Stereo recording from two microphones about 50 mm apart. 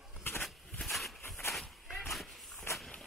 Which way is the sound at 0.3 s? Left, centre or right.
Left.